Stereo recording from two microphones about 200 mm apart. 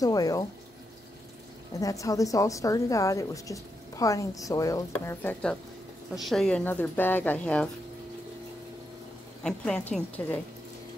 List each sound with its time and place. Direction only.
0.0 s a woman's voice: 20° left (ahead or behind)
1.8 s a woman's voice: 15° left (ahead or behind)
9.4 s a woman's voice: 5° left (ahead or behind)